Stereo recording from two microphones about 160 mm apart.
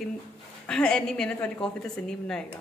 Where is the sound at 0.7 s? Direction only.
5° left (ahead or behind).